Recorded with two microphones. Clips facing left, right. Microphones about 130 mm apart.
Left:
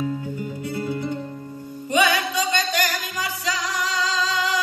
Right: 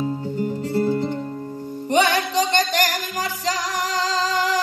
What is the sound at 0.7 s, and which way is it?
Music, 40° right (ahead or behind).